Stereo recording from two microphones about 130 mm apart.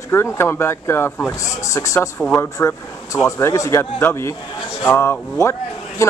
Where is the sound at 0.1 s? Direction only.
20° left (ahead or behind).